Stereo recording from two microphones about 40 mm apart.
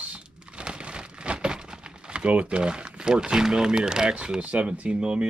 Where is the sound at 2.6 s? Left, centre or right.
Right.